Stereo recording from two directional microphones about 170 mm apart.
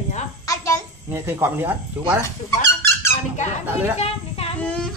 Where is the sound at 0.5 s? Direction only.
20° left (ahead or behind).